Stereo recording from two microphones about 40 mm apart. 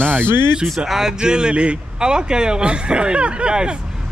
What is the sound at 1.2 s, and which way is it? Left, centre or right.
Speech, right.